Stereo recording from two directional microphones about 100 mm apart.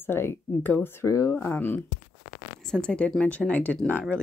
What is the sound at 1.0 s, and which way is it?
Speech, 35° left (ahead or behind).